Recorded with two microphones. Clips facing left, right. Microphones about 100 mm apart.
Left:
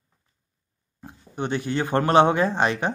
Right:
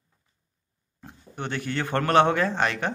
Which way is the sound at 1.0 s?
15° left (ahead or behind).